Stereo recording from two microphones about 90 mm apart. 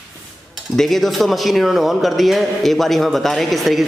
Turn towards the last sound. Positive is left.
turn(degrees=0)  # may be behind; listen again after turning